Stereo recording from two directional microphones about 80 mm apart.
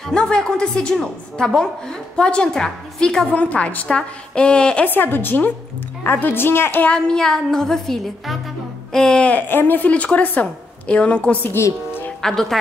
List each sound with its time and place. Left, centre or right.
0.1 s a woman's voice: centre
3.3 s a woman's voice: centre
6.9 s a woman's voice: centre
12.2 s speech: centre